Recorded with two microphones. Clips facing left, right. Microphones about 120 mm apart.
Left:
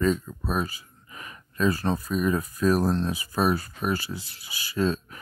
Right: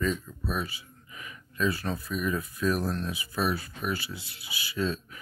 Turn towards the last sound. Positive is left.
turn(degrees=40)  # may be behind; listen again after turning